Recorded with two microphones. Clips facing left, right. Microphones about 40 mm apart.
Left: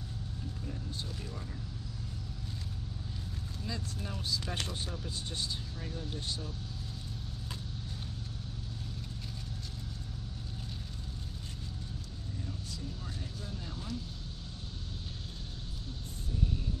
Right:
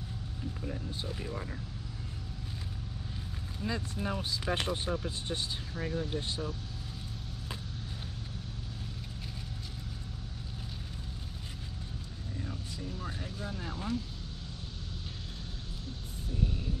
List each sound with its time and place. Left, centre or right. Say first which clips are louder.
0.7 s speech: right 4 dB; right
3.6 s speech: right 7 dB; right
12.4 s vehicle: right 2 dB; right